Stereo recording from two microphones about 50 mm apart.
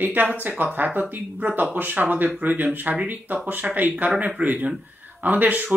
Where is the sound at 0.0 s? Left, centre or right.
Right.